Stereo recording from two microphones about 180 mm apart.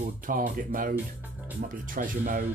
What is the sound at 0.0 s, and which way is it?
Speech, 50° right (ahead or behind).